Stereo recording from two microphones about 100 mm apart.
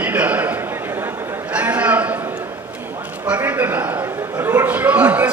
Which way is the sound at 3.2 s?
15° right (ahead or behind).